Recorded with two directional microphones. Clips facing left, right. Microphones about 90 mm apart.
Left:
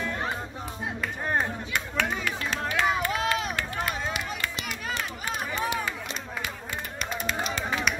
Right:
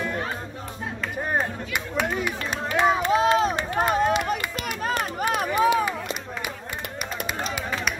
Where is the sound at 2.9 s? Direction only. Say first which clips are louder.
Right 10 dB; 25° right (ahead or behind).